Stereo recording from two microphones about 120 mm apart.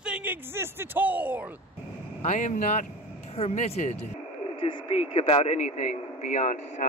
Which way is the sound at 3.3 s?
60° left (ahead or behind).